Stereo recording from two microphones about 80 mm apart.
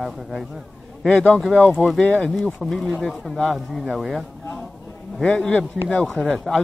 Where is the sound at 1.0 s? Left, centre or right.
Centre.